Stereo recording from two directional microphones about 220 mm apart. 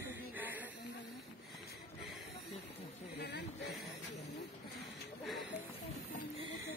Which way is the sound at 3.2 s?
45° left (ahead or behind).